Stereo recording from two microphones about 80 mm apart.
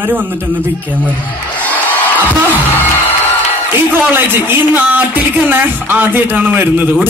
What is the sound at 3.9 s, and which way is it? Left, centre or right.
A woman's voice, right.